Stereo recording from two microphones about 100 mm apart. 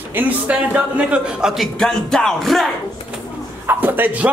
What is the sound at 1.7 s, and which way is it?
Music, 5° left (ahead or behind).